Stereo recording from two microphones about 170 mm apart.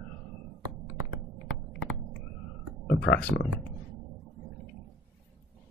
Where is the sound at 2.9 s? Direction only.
85° left.